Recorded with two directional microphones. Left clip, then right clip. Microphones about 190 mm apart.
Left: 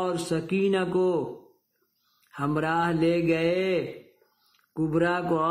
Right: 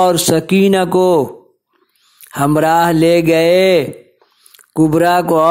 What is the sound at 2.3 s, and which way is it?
A man's voice, 45° right (ahead or behind).